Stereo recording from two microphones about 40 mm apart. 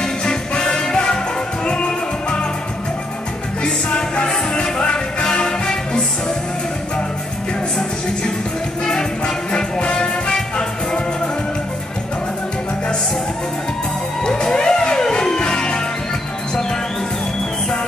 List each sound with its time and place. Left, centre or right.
0.0 s music: centre
3.6 s music: left
8.8 s music: left
14.2 s music: left